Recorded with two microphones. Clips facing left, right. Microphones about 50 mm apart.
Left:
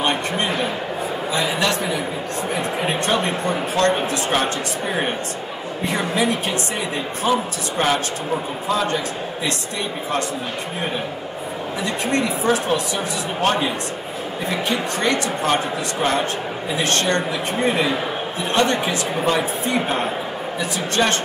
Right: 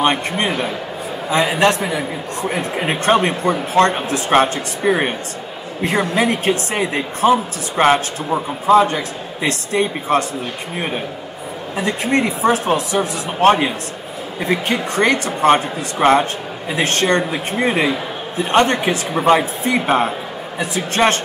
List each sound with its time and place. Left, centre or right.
0.0 s a woman's voice: right
1.5 s a woman's voice: right
11.8 s speech: right
13.4 s a woman's voice: right
15.0 s a woman's voice: right